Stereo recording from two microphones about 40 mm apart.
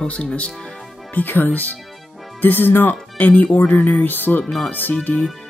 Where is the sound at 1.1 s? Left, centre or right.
Left.